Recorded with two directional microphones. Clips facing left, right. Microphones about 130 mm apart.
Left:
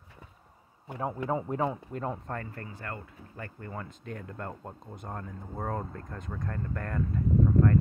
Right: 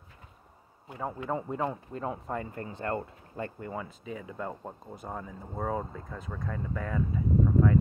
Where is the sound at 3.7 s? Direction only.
5° right (ahead or behind).